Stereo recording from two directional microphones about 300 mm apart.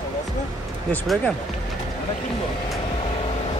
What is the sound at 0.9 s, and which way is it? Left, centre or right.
Speech, centre.